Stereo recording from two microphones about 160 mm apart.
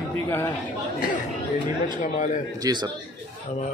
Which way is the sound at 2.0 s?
55° left (ahead or behind).